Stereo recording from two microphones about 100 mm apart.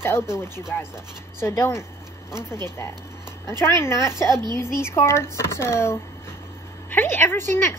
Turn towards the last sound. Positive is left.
turn(degrees=25)  # may be behind; listen again after turning